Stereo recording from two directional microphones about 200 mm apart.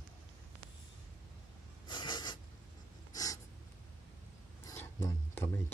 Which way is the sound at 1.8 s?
25° left (ahead or behind).